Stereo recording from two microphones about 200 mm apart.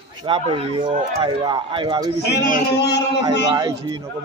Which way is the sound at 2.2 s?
55° left (ahead or behind).